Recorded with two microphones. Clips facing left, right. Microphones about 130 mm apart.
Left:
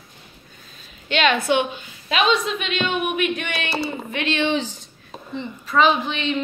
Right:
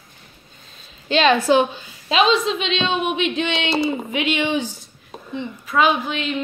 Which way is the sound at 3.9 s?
15° right (ahead or behind).